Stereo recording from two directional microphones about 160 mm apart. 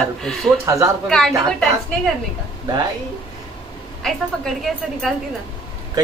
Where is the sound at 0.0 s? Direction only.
Centre (ahead or behind).